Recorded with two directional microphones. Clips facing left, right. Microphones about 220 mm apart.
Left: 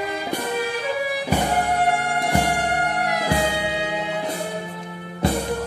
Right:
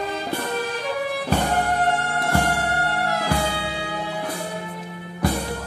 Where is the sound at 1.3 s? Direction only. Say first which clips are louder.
Left 1 dB; 10° left (ahead or behind).